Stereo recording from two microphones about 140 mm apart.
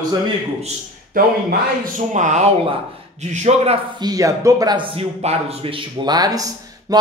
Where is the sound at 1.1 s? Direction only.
90° right.